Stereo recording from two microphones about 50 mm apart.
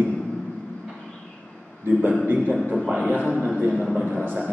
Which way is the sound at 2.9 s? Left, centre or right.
Right.